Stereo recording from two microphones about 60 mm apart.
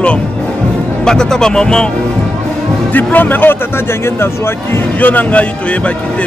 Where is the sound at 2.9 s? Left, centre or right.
Left.